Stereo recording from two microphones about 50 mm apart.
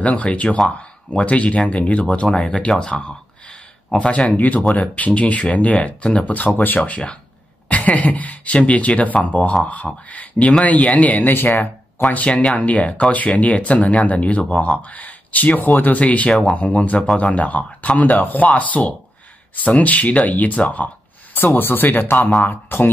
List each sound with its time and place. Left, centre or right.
0.0 s speech: left
2.2 s speech: centre
2.9 s a sound: left
4.7 s speech: left
11.2 s speech: left
11.6 s speech: left
16.0 s speech: left
21.5 s speech: left